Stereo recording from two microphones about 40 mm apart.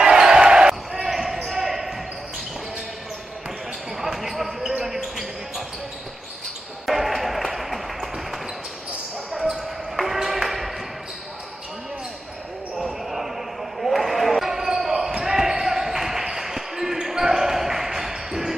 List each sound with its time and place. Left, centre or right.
0.0 s basketball bounce: centre
1.0 s basketball bounce: centre
3.9 s basketball bounce: centre
6.9 s basketball bounce: centre
9.9 s music: centre
13.7 s basketball bounce: centre